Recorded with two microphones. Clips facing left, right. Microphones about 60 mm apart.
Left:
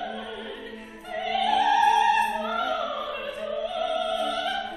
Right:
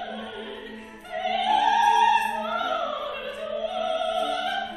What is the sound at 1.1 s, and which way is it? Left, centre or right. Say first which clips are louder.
Opera: right 1 dB; centre.